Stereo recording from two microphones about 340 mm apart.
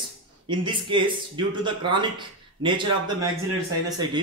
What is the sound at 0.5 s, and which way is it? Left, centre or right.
Speech, centre.